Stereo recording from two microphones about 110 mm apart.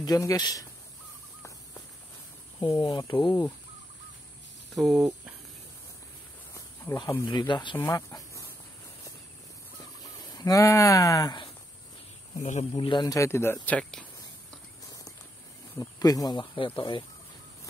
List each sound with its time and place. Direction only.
0.0 s a man's voice: 35° left (ahead or behind)
2.8 s a man's voice: 40° left (ahead or behind)
4.7 s speech: centre (ahead or behind)
6.5 s snake: 25° left (ahead or behind)
7.2 s speech: 40° left (ahead or behind)
7.7 s speech: 25° left (ahead or behind)
10.3 s speech: 30° left (ahead or behind)
12.4 s a man's voice: 90° left
12.7 s speech: 50° left (ahead or behind)
13.0 s speech: 30° left (ahead or behind); by 14.0 s 15° left (ahead or behind)
16.0 s speech: 35° left (ahead or behind); by 17.0 s 50° left (ahead or behind)